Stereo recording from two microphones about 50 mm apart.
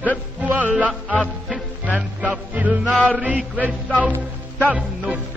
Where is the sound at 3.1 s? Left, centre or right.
Right.